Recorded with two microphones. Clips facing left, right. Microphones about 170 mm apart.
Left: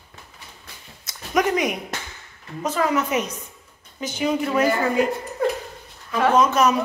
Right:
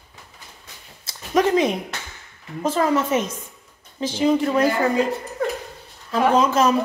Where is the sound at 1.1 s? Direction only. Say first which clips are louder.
Right 3 dB; 25° right (ahead or behind).